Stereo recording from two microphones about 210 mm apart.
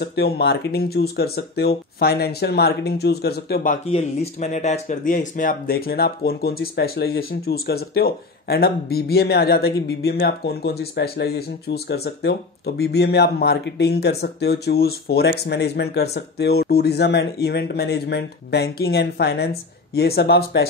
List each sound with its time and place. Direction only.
0.0 s speech: 50° left (ahead or behind)
3.9 s speech: 30° left (ahead or behind); by 20.6 s 50° left (ahead or behind)